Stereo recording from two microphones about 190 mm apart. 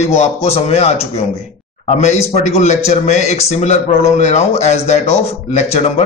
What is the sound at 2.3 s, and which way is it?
Speech, 35° left (ahead or behind).